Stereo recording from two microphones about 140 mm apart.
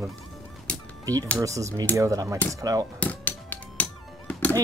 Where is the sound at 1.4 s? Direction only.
20° right (ahead or behind).